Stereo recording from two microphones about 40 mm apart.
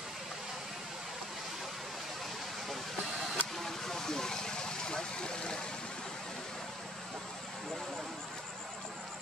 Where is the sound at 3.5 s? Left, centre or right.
Centre.